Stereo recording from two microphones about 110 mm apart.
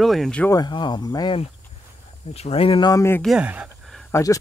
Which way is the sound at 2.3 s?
65° left (ahead or behind).